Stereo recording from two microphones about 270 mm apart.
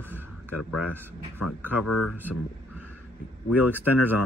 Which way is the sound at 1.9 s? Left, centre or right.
Left.